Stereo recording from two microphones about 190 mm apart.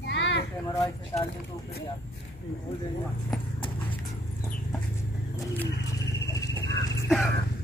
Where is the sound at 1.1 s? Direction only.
20° left (ahead or behind).